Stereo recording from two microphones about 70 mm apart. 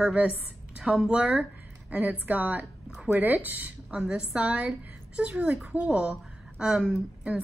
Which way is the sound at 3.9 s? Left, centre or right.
Centre.